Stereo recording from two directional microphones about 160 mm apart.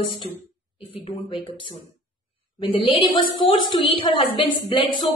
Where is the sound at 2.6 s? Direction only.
30° left (ahead or behind).